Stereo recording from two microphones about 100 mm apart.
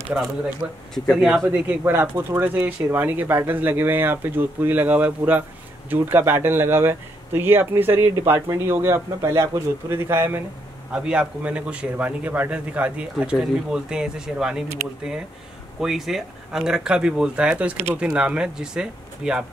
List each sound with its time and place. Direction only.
0.6 s a man's voice: 15° right (ahead or behind)
0.9 s speech: centre (ahead or behind)
1.4 s speech: 20° right (ahead or behind)
10.9 s a man's voice: 10° right (ahead or behind)
15.8 s a man's voice: 5° right (ahead or behind)